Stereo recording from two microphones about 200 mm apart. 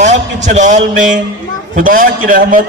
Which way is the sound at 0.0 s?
35° right (ahead or behind).